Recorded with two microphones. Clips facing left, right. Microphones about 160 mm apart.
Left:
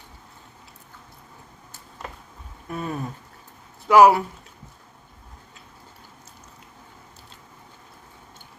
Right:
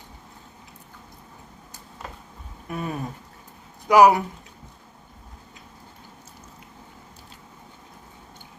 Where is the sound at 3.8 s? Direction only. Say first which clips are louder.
Left 1 dB; 15° right (ahead or behind).